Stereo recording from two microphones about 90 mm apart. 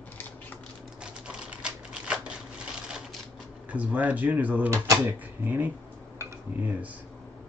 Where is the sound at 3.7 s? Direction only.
15° right (ahead or behind).